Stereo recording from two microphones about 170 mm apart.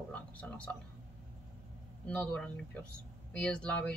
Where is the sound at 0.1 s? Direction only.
10° left (ahead or behind).